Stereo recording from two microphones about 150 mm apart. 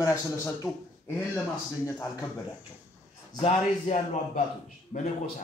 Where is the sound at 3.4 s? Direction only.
50° left (ahead or behind).